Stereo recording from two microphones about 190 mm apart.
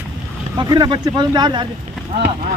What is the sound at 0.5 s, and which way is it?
Speech, 20° right (ahead or behind).